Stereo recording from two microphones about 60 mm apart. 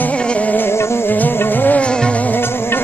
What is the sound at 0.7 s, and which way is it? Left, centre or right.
Music, left.